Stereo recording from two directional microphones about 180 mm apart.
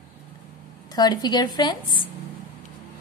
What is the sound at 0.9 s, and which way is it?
Speech, 20° left (ahead or behind).